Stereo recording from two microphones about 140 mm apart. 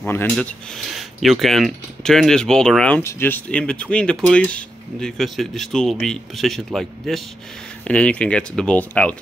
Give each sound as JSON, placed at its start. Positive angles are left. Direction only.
{"t": 0.0, "sound": "speech", "side_deg": 15}
{"t": 3.0, "sound": "speech", "side_deg": 20}